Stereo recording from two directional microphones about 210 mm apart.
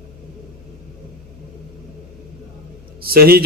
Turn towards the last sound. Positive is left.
turn(degrees=-45)  # may be behind; listen again after turning